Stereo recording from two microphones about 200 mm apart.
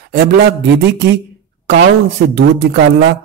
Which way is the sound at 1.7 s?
60° right (ahead or behind).